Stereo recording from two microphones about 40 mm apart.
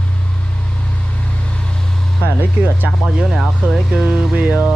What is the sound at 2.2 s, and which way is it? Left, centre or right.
Speech, left.